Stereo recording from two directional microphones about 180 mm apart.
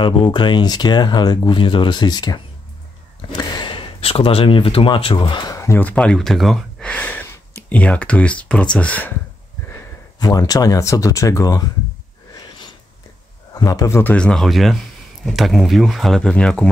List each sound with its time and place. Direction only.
0.0 s speech: 25° left (ahead or behind); by 9.1 s 10° left (ahead or behind)
10.1 s speech: 20° left (ahead or behind)
13.6 s speech: 20° left (ahead or behind)